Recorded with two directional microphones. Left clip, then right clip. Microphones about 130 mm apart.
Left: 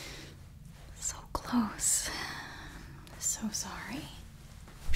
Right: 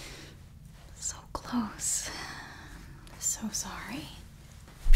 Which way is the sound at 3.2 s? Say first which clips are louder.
Right 1 dB; 5° left (ahead or behind).